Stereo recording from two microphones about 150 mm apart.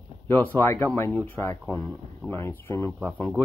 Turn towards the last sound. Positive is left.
turn(degrees=10)  # may be behind; listen again after turning